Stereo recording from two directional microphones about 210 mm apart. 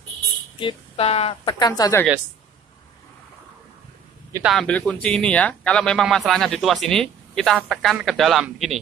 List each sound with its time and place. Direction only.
0.6 s speech: 25° left (ahead or behind)
4.3 s speech: 5° right (ahead or behind)